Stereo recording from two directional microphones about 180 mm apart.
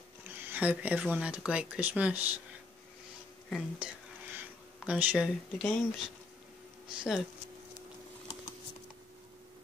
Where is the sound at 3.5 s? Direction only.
10° right (ahead or behind).